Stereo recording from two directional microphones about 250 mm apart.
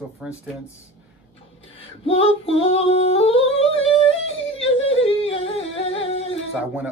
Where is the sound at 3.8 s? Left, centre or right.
Left.